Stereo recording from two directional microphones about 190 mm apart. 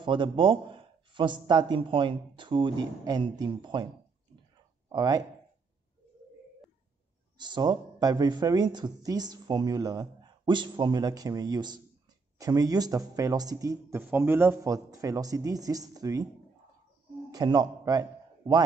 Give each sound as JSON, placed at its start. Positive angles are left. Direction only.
{"t": 0.0, "sound": "speech", "side_deg": -25}
{"t": 4.8, "sound": "speech", "side_deg": -20}
{"t": 7.3, "sound": "speech", "side_deg": -25}
{"t": 17.3, "sound": "a man's voice", "side_deg": -20}